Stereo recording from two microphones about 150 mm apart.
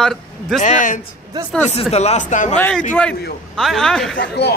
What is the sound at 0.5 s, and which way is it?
Speech, 55° left (ahead or behind).